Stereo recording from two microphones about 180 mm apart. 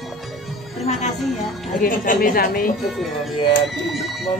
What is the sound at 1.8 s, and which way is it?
Speech, 50° left (ahead or behind).